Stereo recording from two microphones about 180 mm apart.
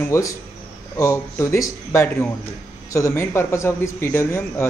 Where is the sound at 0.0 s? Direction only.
15° left (ahead or behind).